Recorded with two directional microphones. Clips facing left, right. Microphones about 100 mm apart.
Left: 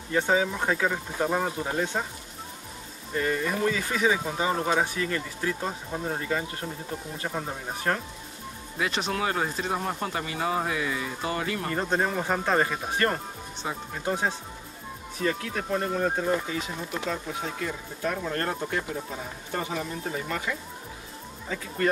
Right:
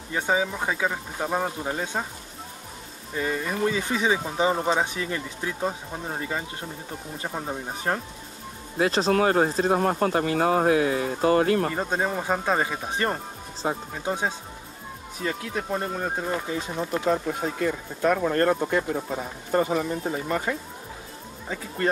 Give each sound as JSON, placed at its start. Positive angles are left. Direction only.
{"t": 0.1, "sound": "speech", "side_deg": -10}
{"t": 3.2, "sound": "speech", "side_deg": -10}
{"t": 8.7, "sound": "speech", "side_deg": -35}
{"t": 11.7, "sound": "speech", "side_deg": -10}
{"t": 13.6, "sound": "speech", "side_deg": -40}
{"t": 14.0, "sound": "speech", "side_deg": -15}
{"t": 17.0, "sound": "speech", "side_deg": -50}
{"t": 18.3, "sound": "speech", "side_deg": -45}
{"t": 20.0, "sound": "speech", "side_deg": -30}
{"t": 21.5, "sound": "speech", "side_deg": -25}